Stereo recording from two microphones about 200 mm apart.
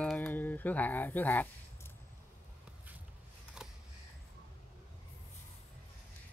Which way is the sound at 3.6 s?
5° right (ahead or behind).